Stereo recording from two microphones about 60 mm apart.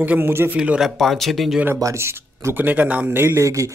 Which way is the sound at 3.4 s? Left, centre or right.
Right.